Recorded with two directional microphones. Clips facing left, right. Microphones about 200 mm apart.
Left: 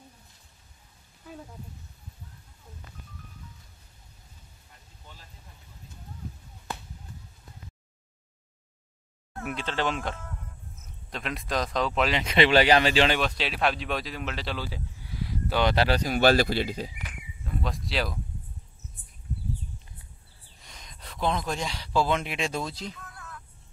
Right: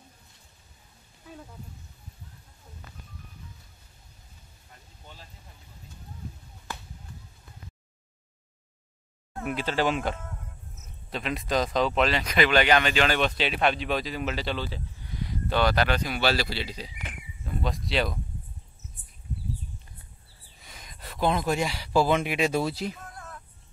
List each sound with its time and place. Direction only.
9.4 s speech: 5° right (ahead or behind)
12.1 s speech: 25° left (ahead or behind)
13.2 s speech: centre (ahead or behind)
15.6 s speech: 30° left (ahead or behind); by 16.9 s 50° left (ahead or behind)
17.5 s speech: centre (ahead or behind)
20.6 s speech: 5° right (ahead or behind)
23.0 s music: 45° right (ahead or behind)